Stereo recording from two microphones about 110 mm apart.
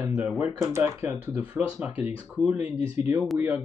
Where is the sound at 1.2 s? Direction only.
15° right (ahead or behind).